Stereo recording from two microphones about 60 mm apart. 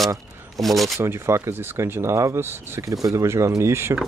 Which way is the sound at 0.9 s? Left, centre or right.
Right.